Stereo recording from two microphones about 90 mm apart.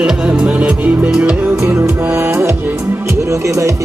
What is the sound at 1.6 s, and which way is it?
Music, 25° right (ahead or behind).